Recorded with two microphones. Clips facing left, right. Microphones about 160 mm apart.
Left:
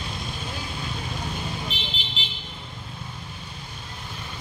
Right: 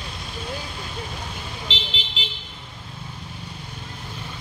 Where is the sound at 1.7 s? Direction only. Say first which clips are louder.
Right 2 dB; 90° right.